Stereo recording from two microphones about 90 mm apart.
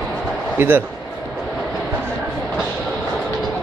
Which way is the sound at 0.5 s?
25° right (ahead or behind).